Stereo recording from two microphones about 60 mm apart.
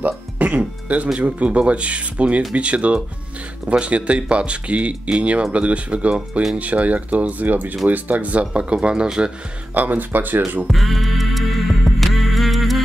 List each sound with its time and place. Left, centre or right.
0.0 s speech: right
9.8 s speech: right
10.7 s music: centre